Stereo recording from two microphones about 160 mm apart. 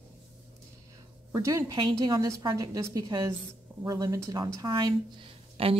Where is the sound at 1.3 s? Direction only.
20° right (ahead or behind).